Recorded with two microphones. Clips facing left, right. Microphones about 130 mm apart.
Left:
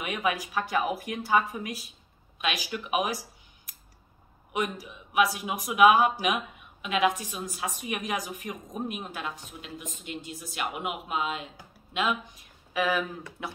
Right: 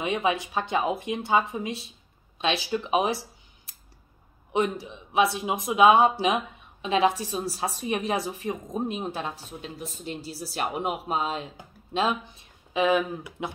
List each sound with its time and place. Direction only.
0.0 s speech: 25° right (ahead or behind)